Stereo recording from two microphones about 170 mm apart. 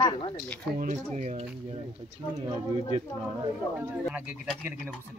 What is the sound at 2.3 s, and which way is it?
Speech, 25° right (ahead or behind).